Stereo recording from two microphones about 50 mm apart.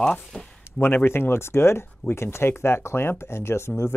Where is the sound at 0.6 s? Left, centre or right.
Left.